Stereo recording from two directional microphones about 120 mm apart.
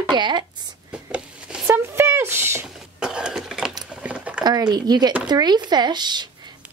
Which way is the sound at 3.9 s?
10° right (ahead or behind).